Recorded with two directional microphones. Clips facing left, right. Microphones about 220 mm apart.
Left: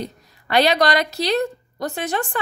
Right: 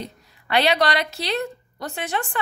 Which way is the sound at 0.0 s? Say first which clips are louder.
Left 4 dB; 40° left (ahead or behind).